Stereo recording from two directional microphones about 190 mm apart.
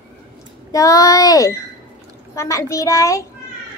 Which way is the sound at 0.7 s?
15° left (ahead or behind).